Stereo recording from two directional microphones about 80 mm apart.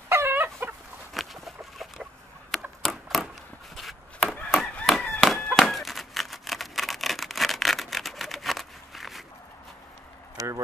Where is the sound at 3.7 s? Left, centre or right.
Centre.